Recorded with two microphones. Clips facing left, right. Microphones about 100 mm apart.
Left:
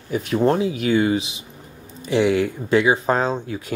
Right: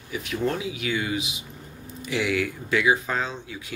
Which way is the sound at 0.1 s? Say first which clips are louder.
Left 8 dB; 40° left (ahead or behind).